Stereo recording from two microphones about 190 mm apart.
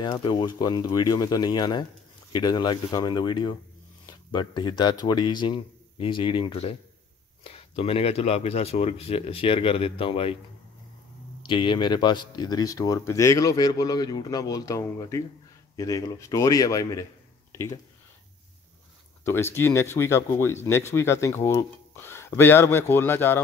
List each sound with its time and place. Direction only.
0.0 s speech: 25° left (ahead or behind)
11.4 s speech: 25° left (ahead or behind)
17.5 s a sound: 15° left (ahead or behind)
19.2 s speech: 15° left (ahead or behind)